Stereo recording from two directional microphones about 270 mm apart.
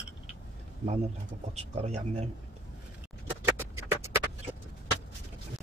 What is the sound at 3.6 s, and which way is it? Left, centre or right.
Music, centre.